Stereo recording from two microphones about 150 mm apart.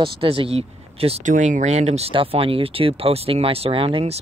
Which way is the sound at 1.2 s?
60° right (ahead or behind).